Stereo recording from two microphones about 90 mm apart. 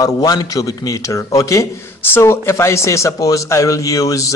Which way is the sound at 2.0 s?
25° left (ahead or behind).